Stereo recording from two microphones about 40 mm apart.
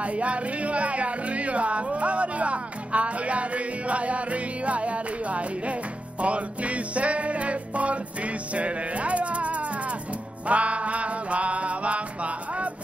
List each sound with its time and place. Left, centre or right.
0.0 s speech: right
6.2 s music: right